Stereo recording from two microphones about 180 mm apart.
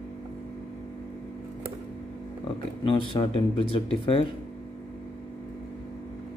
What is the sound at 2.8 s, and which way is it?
Speech, 30° left (ahead or behind).